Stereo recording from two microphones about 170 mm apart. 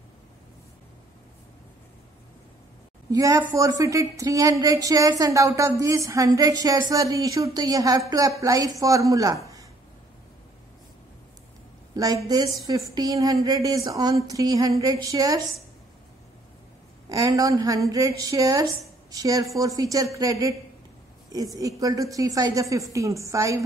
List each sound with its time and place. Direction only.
3.1 s a woman's voice: 20° right (ahead or behind)
11.9 s a woman's voice: 20° right (ahead or behind)
17.1 s a woman's voice: 20° right (ahead or behind)
21.5 s a woman's voice: 20° right (ahead or behind)